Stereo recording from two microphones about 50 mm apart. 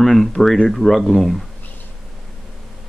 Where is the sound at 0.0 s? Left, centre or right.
Centre.